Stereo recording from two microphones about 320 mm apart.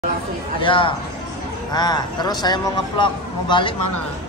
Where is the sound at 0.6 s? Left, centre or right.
Centre.